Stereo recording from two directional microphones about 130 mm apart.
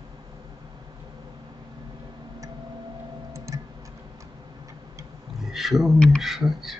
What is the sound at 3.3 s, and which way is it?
Tick-tock, 25° right (ahead or behind).